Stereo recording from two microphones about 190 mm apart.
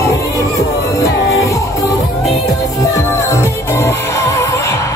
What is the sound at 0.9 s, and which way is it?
Music, 15° left (ahead or behind).